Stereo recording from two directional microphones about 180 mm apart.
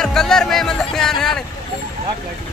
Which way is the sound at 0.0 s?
5° left (ahead or behind).